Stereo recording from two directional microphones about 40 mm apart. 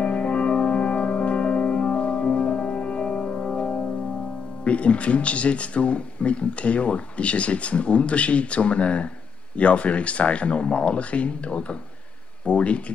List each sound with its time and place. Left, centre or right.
0.0 s music: left
4.6 s speech: left